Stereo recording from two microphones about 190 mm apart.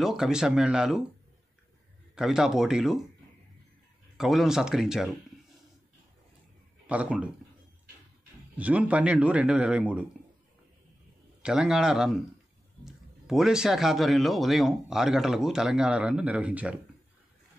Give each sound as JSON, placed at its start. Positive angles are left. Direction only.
{"t": 0.0, "sound": "speech", "side_deg": 0}
{"t": 2.1, "sound": "speech", "side_deg": 0}
{"t": 4.2, "sound": "speech", "side_deg": 0}
{"t": 6.9, "sound": "speech", "side_deg": -5}
{"t": 8.5, "sound": "speech", "side_deg": -5}
{"t": 11.4, "sound": "speech", "side_deg": -5}